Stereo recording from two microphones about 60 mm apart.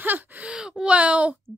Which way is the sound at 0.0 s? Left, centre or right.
Right.